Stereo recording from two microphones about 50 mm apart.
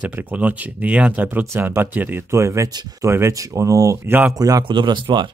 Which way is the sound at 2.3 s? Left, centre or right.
Right.